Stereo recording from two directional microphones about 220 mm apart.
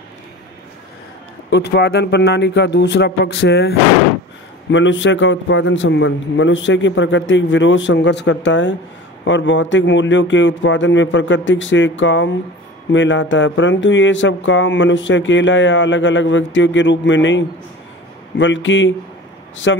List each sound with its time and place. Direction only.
1.5 s speech: 50° left (ahead or behind)